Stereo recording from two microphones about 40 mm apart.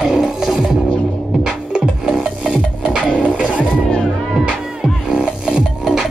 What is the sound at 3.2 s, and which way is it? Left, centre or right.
Music, right.